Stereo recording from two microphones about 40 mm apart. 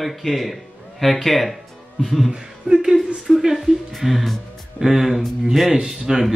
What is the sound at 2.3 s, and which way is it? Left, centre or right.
A woman's voice, centre.